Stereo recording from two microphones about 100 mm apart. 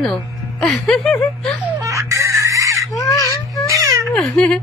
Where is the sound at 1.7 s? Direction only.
30° right (ahead or behind).